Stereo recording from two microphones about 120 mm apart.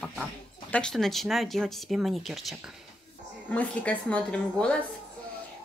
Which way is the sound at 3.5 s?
10° left (ahead or behind).